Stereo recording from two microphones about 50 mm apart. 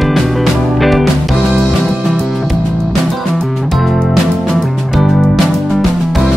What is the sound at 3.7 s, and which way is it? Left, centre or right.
Music, centre.